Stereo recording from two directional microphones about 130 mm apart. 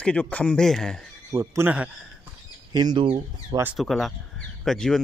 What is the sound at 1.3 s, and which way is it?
Speech, 20° right (ahead or behind).